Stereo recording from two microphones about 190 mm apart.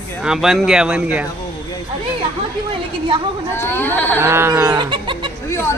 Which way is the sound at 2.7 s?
25° right (ahead or behind).